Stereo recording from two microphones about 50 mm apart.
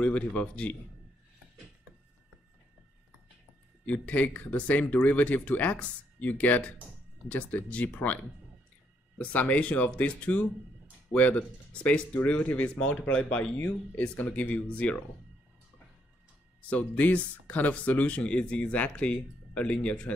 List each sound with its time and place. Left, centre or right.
0.0 s speech: left
3.8 s speech: left
7.7 s speech: left
9.2 s speech: left
13.6 s speech: left
16.6 s speech: left